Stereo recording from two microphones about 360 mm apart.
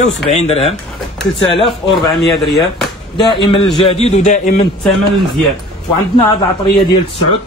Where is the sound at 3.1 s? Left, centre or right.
Centre.